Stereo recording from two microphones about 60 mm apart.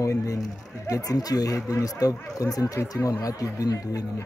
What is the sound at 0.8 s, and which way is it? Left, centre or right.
Speech, left.